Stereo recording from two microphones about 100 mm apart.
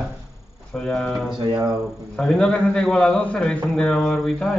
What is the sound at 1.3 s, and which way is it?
Speech, 40° right (ahead or behind).